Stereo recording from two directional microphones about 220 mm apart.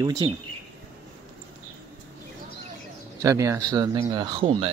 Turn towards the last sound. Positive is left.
turn(degrees=-20)  # may be behind; listen again after turning